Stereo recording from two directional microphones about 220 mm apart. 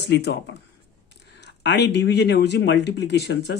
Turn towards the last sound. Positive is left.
turn(degrees=50)  # may be behind; listen again after turning